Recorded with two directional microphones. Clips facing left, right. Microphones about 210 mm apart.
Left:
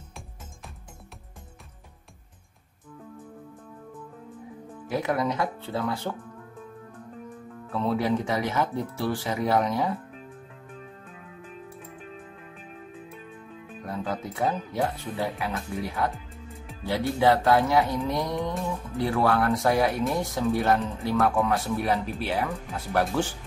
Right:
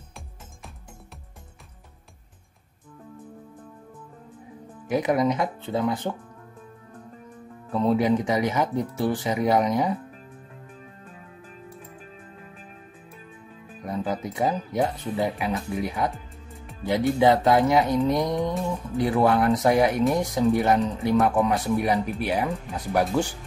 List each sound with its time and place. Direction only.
4.8 s speech: 15° right (ahead or behind)
7.7 s speech: 15° right (ahead or behind)
10.7 s music: centre (ahead or behind)
13.8 s speech: 15° right (ahead or behind)